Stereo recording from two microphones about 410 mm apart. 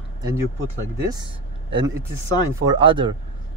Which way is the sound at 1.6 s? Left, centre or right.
Centre.